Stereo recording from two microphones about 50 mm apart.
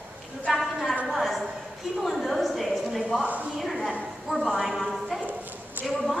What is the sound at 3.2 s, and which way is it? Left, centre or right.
Speech, right.